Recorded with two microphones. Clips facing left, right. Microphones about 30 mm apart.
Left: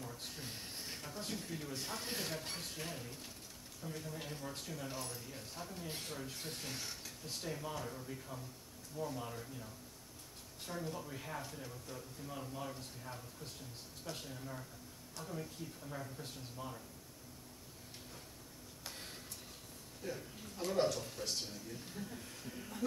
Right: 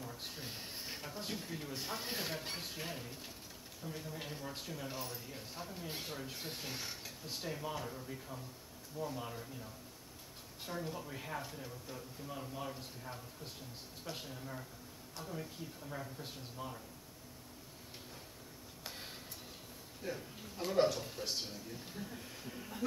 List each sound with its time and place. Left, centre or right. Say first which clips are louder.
0.0 s speech: right 1 dB; centre
10.7 s speech: right 1 dB; centre
20.0 s speech: right 1 dB; centre